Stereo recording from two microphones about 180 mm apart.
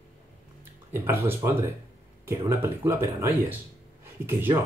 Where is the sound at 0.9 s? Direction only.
15° right (ahead or behind).